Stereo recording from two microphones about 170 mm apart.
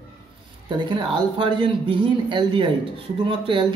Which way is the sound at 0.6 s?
25° right (ahead or behind).